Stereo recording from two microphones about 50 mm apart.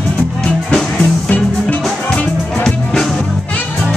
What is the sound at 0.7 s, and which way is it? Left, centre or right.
Music, centre.